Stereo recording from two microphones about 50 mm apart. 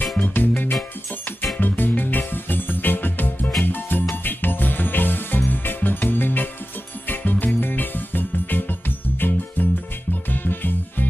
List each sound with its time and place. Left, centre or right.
0.2 s music: left